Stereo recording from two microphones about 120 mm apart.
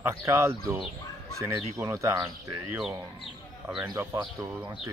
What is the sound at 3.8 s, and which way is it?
Speech, 25° right (ahead or behind).